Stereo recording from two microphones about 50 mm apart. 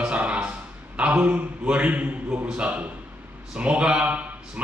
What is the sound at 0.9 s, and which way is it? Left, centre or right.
A man's voice, right.